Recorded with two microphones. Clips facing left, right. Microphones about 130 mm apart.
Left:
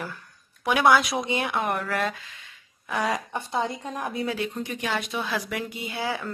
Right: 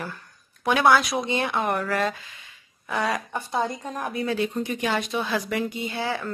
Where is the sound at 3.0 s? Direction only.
15° left (ahead or behind).